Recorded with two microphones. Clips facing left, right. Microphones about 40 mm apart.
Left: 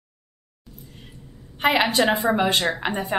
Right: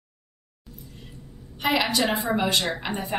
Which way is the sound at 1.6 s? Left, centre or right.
Left.